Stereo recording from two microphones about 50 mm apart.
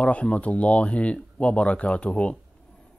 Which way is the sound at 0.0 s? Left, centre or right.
Left.